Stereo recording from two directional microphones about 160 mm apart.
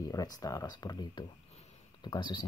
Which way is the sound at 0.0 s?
20° left (ahead or behind).